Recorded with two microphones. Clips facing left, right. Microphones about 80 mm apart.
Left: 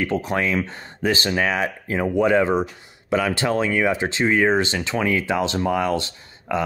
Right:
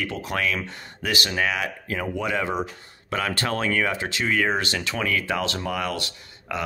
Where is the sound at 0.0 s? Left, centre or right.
Left.